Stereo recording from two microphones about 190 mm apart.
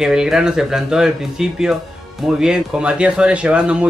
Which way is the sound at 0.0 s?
5° right (ahead or behind).